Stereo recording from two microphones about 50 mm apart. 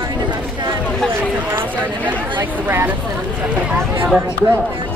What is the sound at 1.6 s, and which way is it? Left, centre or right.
Chatter, right.